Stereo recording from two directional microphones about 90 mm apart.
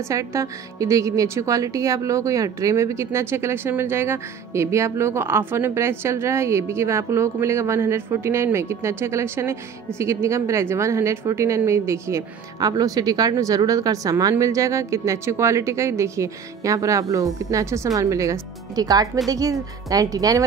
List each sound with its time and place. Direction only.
0.1 s speech: 35° right (ahead or behind)
12.5 s speech: 45° right (ahead or behind)